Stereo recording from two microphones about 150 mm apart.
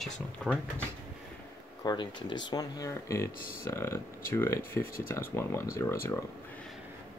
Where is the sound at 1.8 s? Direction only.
30° left (ahead or behind).